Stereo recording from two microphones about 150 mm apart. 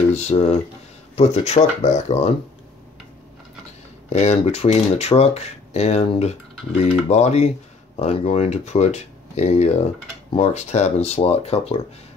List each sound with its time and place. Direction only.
0.1 s speech: 50° left (ahead or behind)
4.1 s speech: 45° left (ahead or behind)